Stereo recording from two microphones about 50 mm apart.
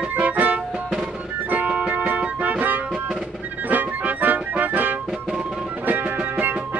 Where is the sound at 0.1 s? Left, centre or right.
Right.